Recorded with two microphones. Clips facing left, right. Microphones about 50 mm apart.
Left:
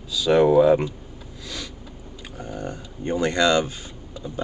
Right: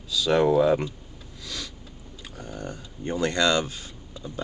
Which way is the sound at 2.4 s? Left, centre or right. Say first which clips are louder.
Left 4 dB; centre.